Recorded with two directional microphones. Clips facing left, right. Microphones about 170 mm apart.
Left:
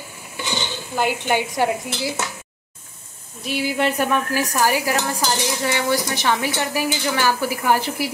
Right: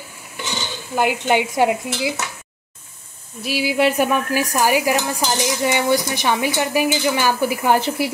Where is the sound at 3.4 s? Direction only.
5° right (ahead or behind).